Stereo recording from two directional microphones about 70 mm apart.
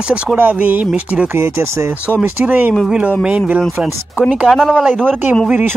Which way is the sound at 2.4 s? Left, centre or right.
Right.